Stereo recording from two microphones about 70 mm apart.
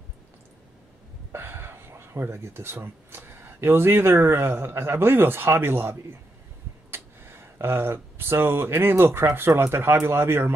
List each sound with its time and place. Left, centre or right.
1.3 s speech: right